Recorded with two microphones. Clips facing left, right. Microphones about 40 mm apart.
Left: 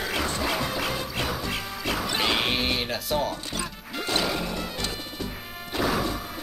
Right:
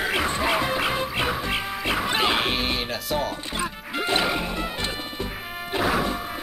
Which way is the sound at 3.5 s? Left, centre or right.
Right.